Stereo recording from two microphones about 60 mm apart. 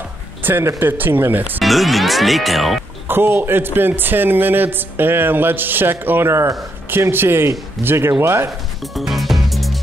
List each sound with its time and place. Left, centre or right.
0.4 s music: right
0.7 s a man's voice: right
1.6 s speech: centre
3.1 s a man's voice: right
8.9 s music: centre